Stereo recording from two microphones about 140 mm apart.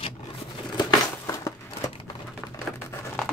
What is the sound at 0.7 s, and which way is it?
Crumpling, 30° left (ahead or behind).